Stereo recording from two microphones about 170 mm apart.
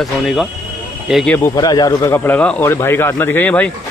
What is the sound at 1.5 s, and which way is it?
Speech, 25° left (ahead or behind).